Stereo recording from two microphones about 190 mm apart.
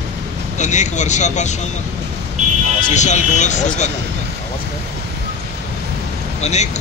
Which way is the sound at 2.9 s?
40° left (ahead or behind).